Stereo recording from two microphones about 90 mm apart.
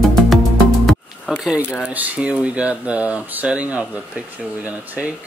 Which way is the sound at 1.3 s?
5° right (ahead or behind).